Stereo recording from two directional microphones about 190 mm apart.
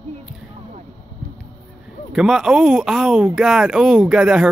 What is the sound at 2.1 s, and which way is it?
Speech, 5° right (ahead or behind).